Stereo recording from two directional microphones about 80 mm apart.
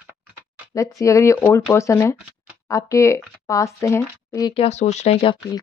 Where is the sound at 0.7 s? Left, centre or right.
Left.